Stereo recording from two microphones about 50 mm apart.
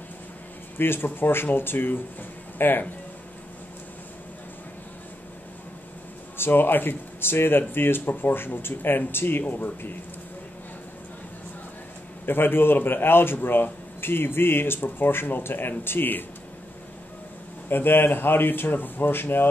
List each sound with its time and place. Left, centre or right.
0.7 s a man's voice: left
6.3 s a man's voice: left
9.4 s speech: left
12.3 s a man's voice: left
17.6 s a man's voice: left